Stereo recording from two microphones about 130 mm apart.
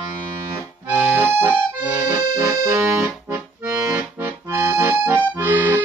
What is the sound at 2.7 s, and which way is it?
Accordion, 20° right (ahead or behind).